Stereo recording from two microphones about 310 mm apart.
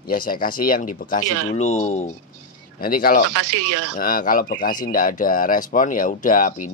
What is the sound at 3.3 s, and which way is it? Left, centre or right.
Speech, right.